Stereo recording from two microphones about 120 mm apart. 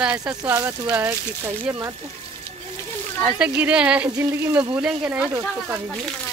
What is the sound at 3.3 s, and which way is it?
Speech, 10° right (ahead or behind).